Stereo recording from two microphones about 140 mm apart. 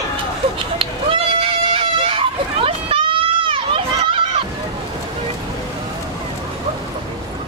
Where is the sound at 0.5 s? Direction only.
40° right (ahead or behind).